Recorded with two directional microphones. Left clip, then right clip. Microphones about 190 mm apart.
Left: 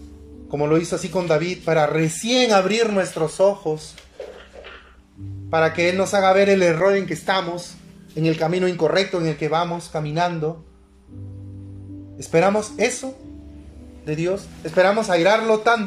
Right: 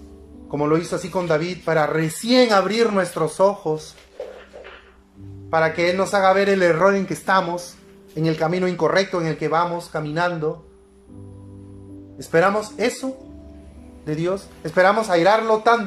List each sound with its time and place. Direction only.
0.5 s speech: 15° left (ahead or behind)
5.5 s speech: 15° left (ahead or behind)
6.8 s speech: centre (ahead or behind)
8.2 s speech: 10° left (ahead or behind)
12.2 s speech: 15° left (ahead or behind)
14.0 s speech: 10° left (ahead or behind)